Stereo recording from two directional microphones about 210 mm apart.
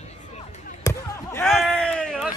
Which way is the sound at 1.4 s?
Centre (ahead or behind).